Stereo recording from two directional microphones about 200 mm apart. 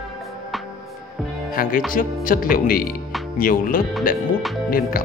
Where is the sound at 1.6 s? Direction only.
45° left (ahead or behind).